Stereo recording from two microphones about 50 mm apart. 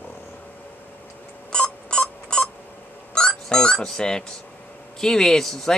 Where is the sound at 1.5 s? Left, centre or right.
Centre.